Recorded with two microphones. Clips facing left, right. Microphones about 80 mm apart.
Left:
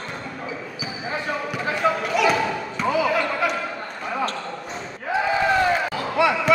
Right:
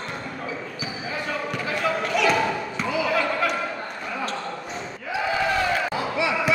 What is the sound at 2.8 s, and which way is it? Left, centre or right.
Basketball bounce, left.